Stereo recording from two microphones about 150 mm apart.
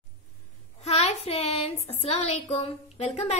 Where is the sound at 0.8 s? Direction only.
45° left (ahead or behind).